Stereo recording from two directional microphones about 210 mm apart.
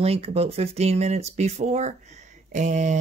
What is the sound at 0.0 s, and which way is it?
Speech, 30° right (ahead or behind).